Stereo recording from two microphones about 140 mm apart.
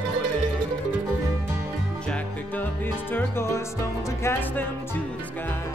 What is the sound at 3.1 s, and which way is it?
Music, 20° left (ahead or behind).